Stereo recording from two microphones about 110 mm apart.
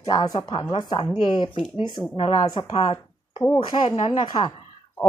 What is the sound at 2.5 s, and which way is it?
Speech, 40° left (ahead or behind).